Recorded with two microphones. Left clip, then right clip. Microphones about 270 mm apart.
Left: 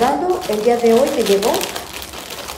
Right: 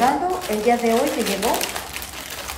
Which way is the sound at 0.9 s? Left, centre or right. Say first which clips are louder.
Left 7 dB; centre.